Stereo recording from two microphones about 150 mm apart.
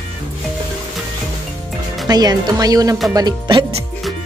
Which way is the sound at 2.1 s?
25° right (ahead or behind).